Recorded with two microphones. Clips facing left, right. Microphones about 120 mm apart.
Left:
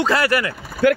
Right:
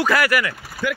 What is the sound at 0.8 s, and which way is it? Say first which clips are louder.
Speech: left 9 dB; 60° left (ahead or behind).